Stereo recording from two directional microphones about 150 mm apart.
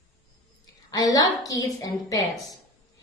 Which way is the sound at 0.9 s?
25° left (ahead or behind).